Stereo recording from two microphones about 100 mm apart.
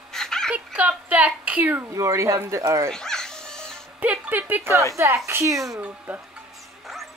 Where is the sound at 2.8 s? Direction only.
5° left (ahead or behind).